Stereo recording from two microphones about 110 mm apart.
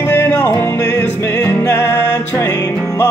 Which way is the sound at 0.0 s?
25° left (ahead or behind).